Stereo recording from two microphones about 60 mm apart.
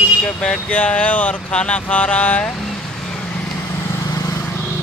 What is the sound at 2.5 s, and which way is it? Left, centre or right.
Vehicle, centre.